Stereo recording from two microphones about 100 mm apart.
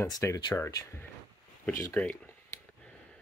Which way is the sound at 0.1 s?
35° left (ahead or behind).